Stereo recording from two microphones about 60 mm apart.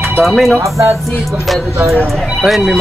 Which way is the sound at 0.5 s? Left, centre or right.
Right.